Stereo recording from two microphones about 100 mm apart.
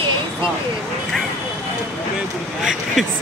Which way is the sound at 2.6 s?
5° right (ahead or behind).